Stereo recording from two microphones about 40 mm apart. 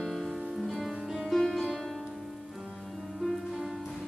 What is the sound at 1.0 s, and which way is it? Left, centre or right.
Music, centre.